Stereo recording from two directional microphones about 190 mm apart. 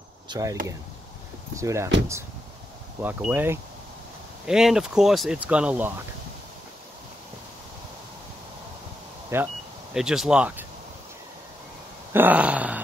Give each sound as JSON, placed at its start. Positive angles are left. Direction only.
{"t": 0.3, "sound": "speech", "side_deg": -20}
{"t": 1.6, "sound": "speech", "side_deg": -15}
{"t": 3.0, "sound": "speech", "side_deg": -10}
{"t": 9.3, "sound": "speech", "side_deg": -15}
{"t": 9.9, "sound": "speech", "side_deg": 0}
{"t": 12.1, "sound": "a sound", "side_deg": -10}